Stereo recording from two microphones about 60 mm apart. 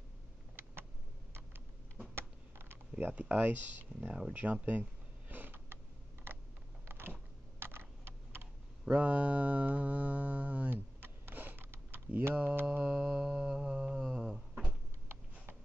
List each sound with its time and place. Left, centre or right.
2.1 s computer keyboard: right
4.3 s speech: right
5.3 s creak: right
6.9 s computer keyboard: right
8.9 s mantra: right
12.1 s speech: right
13.0 s mantra: centre